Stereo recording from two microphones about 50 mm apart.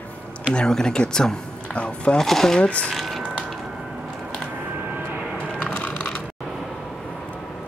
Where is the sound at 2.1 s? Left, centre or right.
Centre.